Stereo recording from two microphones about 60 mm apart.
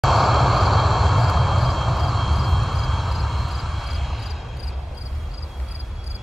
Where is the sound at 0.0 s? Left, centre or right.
Centre.